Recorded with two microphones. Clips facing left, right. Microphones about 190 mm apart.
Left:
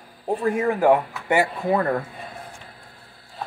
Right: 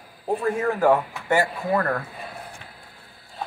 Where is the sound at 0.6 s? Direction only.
15° left (ahead or behind).